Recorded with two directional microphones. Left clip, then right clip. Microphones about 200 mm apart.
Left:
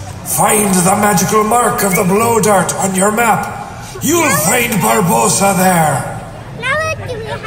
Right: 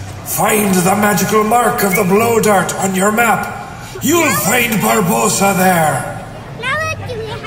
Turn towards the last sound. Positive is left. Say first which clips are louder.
# left 2 dB
turn(degrees=45)  # may be behind; listen again after turning